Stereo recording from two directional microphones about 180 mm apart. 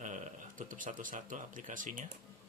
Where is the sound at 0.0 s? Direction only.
45° right (ahead or behind).